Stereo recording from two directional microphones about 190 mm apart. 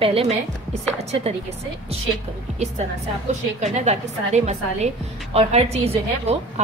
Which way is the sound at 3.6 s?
35° right (ahead or behind).